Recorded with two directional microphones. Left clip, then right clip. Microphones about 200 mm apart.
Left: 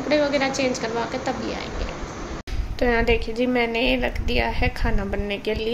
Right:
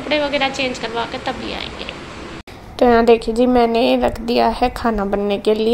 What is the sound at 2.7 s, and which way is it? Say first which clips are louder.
A woman's voice: right 9 dB; 35° right (ahead or behind).